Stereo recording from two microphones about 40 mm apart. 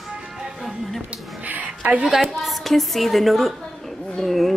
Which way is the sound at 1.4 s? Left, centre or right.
Right.